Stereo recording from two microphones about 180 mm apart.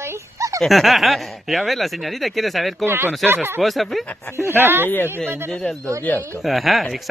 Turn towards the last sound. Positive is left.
turn(degrees=0)  # may be behind; listen again after turning